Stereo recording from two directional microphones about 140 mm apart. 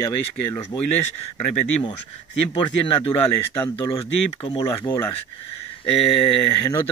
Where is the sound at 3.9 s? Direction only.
35° left (ahead or behind).